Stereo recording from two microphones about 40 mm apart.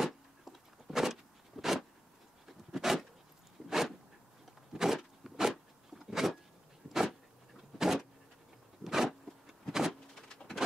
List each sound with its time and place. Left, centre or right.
0.0 s a sound: centre
7.8 s vehicle: centre
8.8 s zipper: centre
10.2 s bird: centre